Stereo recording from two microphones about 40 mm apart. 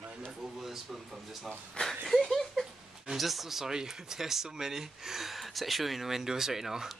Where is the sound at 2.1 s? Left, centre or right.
Centre.